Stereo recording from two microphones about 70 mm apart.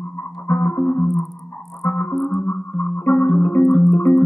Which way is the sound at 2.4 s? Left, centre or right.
Left.